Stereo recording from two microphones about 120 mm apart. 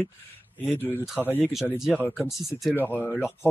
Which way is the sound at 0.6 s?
15° left (ahead or behind).